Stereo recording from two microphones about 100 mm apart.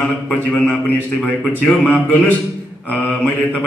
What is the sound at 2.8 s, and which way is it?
Mantra, 15° left (ahead or behind).